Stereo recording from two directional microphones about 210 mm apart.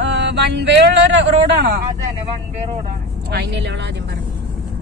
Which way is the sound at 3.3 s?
55° right (ahead or behind).